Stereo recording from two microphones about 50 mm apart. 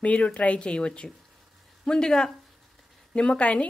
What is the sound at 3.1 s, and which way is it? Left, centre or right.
Speech, left.